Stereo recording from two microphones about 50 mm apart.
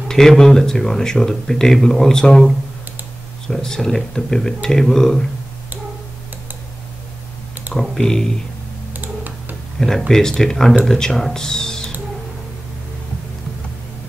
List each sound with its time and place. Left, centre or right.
0.1 s speech: centre
3.4 s speech: centre
8.0 s speech: centre
9.0 s tick-tock: right
9.8 s speech: centre